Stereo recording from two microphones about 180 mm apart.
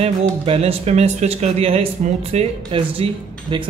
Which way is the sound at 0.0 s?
35° right (ahead or behind).